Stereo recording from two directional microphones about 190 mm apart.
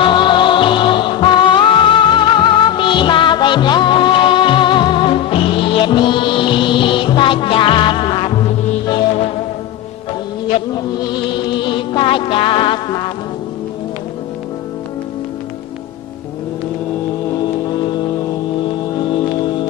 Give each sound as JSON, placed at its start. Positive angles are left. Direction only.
{"t": 0.0, "sound": "music", "side_deg": 25}
{"t": 11.1, "sound": "music", "side_deg": 25}
{"t": 17.6, "sound": "music", "side_deg": 20}